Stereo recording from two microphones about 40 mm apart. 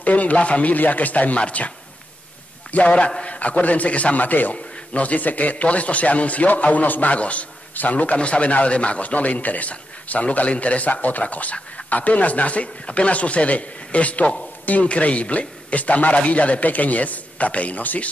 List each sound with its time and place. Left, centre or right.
0.0 s a man's voice: left
2.7 s a man's voice: left